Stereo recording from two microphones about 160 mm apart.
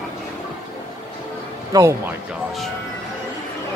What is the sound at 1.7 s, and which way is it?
Speech, 20° right (ahead or behind).